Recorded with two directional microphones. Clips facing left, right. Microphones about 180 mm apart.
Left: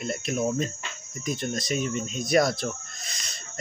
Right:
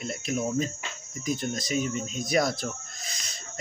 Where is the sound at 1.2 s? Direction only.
5° right (ahead or behind).